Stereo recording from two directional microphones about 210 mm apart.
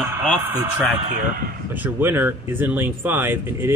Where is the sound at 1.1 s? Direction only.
40° right (ahead or behind).